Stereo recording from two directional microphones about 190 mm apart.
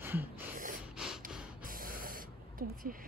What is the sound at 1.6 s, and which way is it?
Spray, 50° right (ahead or behind).